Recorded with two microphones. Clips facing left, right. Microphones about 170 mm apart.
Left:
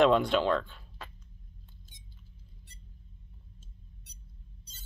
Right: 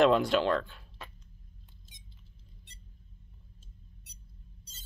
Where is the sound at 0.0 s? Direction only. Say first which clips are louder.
Even; 5° right (ahead or behind).